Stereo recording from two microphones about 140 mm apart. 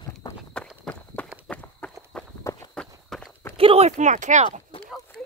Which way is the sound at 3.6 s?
45° right (ahead or behind).